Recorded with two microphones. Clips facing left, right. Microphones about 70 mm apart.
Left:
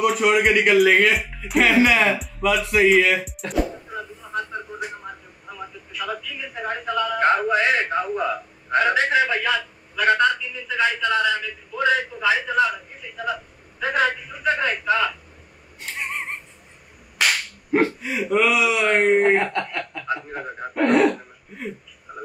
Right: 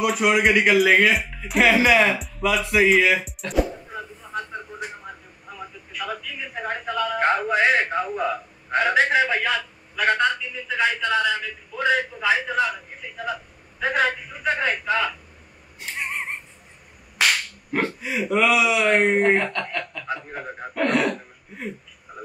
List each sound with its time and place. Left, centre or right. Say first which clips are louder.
0.0 s speech: left 1 dB; centre
5.9 s telephone: left 1 dB; centre
7.2 s a sound: left 1 dB; centre
13.7 s a sound: left 1 dB; centre
15.8 s cat: even; centre
18.0 s speech: left 1 dB; centre
19.5 s speech: left 2 dB; centre